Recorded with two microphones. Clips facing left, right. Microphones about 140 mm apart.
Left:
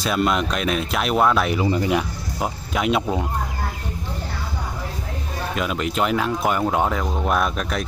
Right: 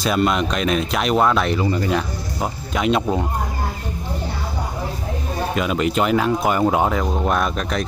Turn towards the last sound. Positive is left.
turn(degrees=5)  # may be behind; listen again after turning